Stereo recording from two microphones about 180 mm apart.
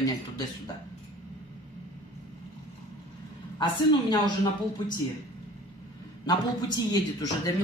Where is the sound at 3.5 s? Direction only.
25° left (ahead or behind).